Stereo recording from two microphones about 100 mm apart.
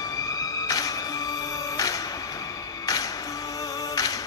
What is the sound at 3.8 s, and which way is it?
Music, 40° left (ahead or behind).